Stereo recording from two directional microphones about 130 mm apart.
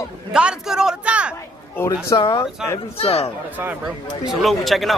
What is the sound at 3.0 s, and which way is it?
Speech, 50° left (ahead or behind).